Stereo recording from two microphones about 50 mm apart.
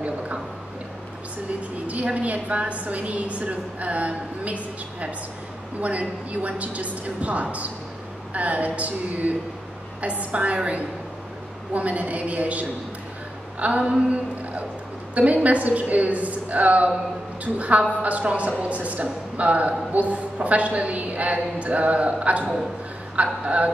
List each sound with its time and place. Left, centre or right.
1.9 s a woman's voice: right
5.8 s a woman's voice: right